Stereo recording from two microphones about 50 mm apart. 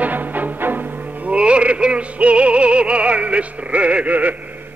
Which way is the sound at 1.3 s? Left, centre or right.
Right.